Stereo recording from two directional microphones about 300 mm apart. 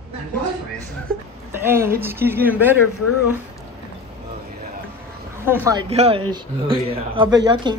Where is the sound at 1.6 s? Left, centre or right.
Centre.